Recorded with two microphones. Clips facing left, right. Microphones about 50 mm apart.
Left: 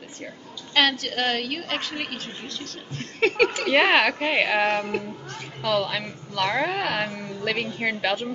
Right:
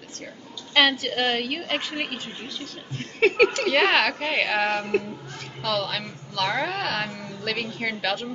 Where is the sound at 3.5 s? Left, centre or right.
Centre.